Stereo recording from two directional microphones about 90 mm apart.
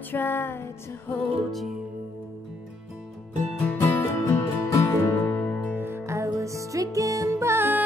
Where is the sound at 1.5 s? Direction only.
Centre (ahead or behind).